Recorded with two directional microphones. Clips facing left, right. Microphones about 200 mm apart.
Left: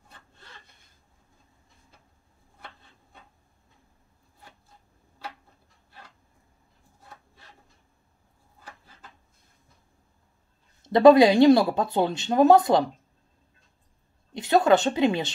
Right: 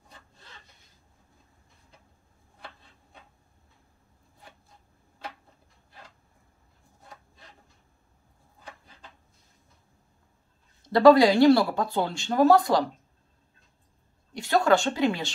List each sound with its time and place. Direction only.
10.9 s speech: 20° left (ahead or behind)
14.3 s a woman's voice: 20° left (ahead or behind)